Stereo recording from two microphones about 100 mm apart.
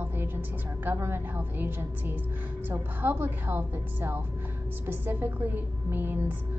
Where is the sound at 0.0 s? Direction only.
20° right (ahead or behind).